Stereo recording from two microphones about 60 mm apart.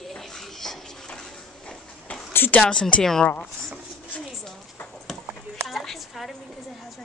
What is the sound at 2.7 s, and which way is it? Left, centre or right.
Speech, centre.